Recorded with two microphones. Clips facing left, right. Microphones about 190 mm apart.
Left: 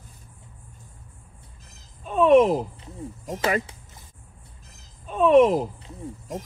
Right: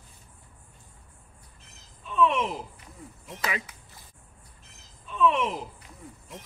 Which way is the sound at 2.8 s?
25° left (ahead or behind).